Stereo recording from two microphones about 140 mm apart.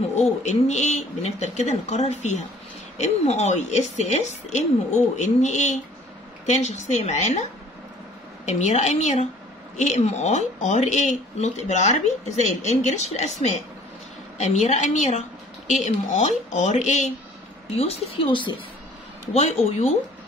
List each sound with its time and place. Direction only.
0.1 s speech: 55° left (ahead or behind)
8.5 s speech: 55° left (ahead or behind)
17.7 s speech: 40° left (ahead or behind)